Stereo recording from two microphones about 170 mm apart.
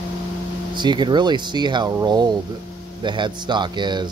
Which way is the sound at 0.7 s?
25° right (ahead or behind).